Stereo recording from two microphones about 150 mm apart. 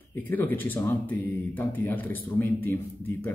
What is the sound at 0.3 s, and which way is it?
Speech, 15° left (ahead or behind).